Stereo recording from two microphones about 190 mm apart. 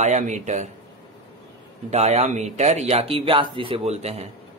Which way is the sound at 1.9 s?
35° right (ahead or behind).